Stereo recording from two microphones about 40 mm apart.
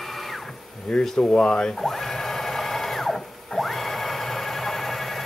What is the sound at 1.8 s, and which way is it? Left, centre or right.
Sewing machine, centre.